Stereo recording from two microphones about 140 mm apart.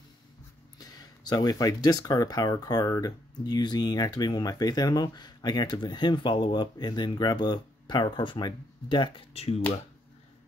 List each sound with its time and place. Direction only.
0.7 s speech: 30° left (ahead or behind); by 9.6 s 45° left (ahead or behind)